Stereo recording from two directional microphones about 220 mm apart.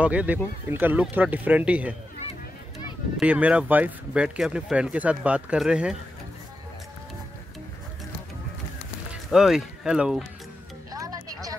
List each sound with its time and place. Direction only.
0.0 s a man's voice: 5° right (ahead or behind)
3.2 s speech: 5° right (ahead or behind)
9.1 s speech: centre (ahead or behind)
10.9 s music: 15° right (ahead or behind)